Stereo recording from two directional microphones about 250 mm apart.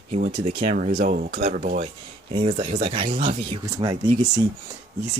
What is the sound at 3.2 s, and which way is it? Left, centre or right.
Speech, right.